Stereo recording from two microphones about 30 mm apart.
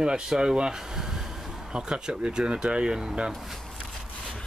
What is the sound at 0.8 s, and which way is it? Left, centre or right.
Train, centre.